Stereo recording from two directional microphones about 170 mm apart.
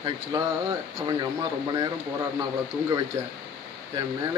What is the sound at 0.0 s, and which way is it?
Speech, 25° right (ahead or behind).